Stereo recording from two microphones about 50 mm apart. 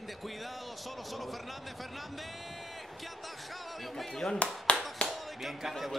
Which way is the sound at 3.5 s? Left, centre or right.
Centre.